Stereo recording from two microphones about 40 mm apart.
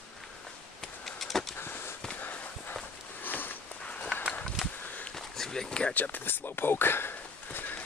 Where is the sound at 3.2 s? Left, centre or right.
Left.